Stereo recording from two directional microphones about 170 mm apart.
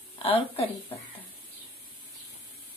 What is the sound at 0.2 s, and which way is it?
Speech, 35° left (ahead or behind).